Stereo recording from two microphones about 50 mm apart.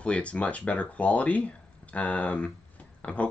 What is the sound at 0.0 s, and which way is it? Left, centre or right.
Speech, left.